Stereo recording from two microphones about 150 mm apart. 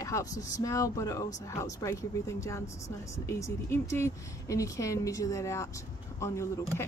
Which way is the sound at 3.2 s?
20° left (ahead or behind).